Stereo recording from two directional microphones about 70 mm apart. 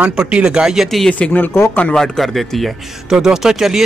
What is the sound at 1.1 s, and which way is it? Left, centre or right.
Speech, left.